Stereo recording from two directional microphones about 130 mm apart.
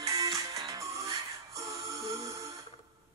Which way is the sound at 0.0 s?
25° right (ahead or behind).